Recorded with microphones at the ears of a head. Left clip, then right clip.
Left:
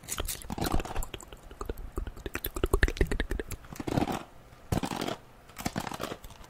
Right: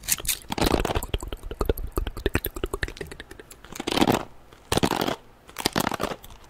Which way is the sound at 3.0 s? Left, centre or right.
Left.